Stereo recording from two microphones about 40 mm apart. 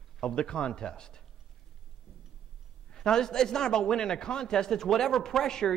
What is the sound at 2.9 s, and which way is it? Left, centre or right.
A man's voice, centre.